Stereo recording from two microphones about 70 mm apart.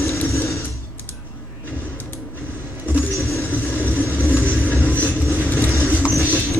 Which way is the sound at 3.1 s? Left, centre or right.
Left.